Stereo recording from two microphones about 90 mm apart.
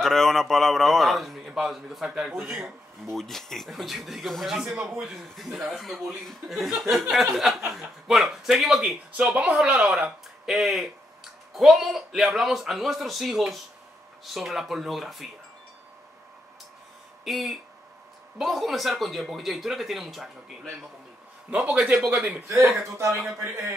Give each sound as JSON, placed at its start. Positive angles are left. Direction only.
{"t": 0.0, "sound": "a man's voice", "side_deg": 5}
{"t": 9.1, "sound": "a man's voice", "side_deg": -15}
{"t": 17.2, "sound": "a man's voice", "side_deg": 0}
{"t": 22.5, "sound": "speech", "side_deg": -35}